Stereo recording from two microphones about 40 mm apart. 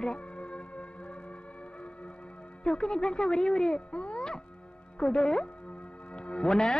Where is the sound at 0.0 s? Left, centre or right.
Left.